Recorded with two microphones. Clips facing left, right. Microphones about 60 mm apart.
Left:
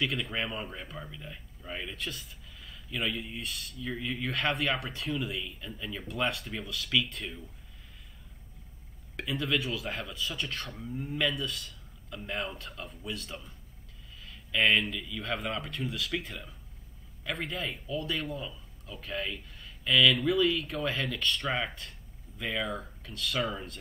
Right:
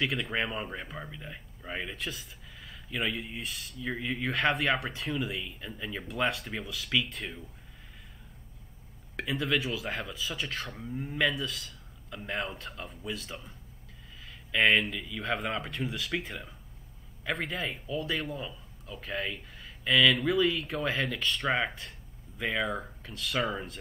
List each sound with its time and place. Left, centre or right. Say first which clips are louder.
0.0 s speech: right 2 dB; centre
2.0 s speech: right 1 dB; centre
5.3 s speech: even; centre
9.1 s speech: right 1 dB; centre
22.4 s speech: right 3 dB; centre
23.1 s speech: right 1 dB; centre